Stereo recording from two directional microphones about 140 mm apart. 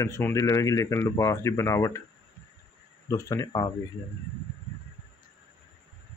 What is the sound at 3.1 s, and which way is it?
Speech, 25° left (ahead or behind).